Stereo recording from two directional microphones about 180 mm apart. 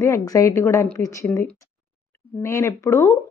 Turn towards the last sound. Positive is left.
turn(degrees=15)  # may be behind; listen again after turning